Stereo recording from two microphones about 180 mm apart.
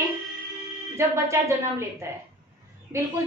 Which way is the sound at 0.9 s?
15° right (ahead or behind).